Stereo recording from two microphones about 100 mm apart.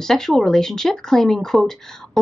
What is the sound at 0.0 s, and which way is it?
Speech, 5° left (ahead or behind).